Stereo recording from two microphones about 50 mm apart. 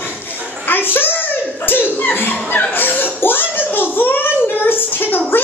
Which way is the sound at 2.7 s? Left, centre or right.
Left.